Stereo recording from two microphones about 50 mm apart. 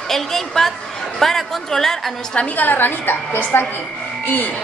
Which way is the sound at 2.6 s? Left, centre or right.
Left.